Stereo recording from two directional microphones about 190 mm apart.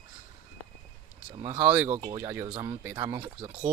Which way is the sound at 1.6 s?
10° right (ahead or behind).